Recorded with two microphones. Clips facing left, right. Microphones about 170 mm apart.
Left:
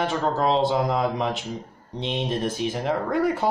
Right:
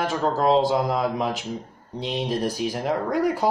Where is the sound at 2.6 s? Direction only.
5° right (ahead or behind).